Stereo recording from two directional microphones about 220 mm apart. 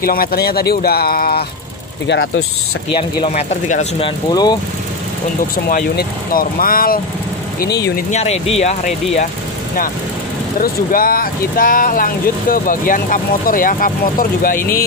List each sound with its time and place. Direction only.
0.0 s speech: 40° left (ahead or behind)
2.0 s speech: 60° left (ahead or behind)
2.9 s speech: 25° left (ahead or behind)
4.3 s speech: 20° left (ahead or behind)
5.7 s speech: 40° left (ahead or behind)
7.9 s speech: 30° left (ahead or behind)
10.6 s speech: 40° left (ahead or behind)